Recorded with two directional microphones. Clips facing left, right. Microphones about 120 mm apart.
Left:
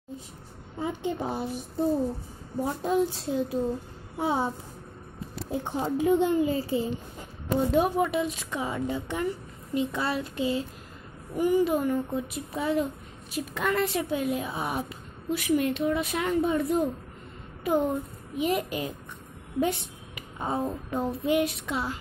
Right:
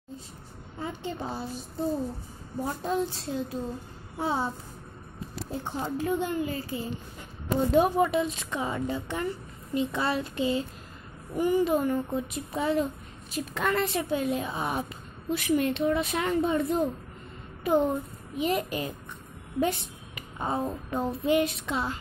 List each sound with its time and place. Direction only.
0.7 s a woman's voice: 15° left (ahead or behind)
7.5 s a woman's voice: centre (ahead or behind)
9.9 s a sound: 5° left (ahead or behind)
11.3 s a woman's voice: 10° left (ahead or behind)
18.4 s a woman's voice: 15° left (ahead or behind)
20.2 s a woman's voice: 10° left (ahead or behind)